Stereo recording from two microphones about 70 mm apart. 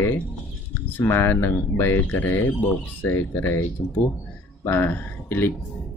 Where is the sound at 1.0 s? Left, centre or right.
Left.